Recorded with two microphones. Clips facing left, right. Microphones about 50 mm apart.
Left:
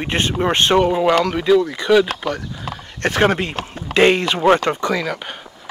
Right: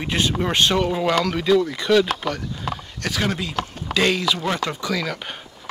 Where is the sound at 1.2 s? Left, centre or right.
Centre.